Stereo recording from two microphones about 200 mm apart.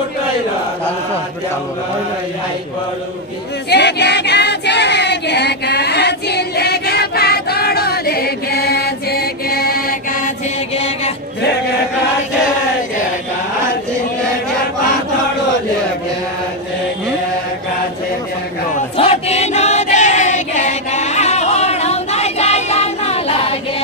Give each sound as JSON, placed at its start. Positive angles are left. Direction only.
{"t": 3.7, "sound": "choir", "side_deg": 55}
{"t": 18.9, "sound": "choir", "side_deg": 30}